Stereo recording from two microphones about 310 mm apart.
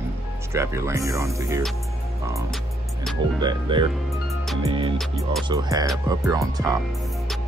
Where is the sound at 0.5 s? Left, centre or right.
Centre.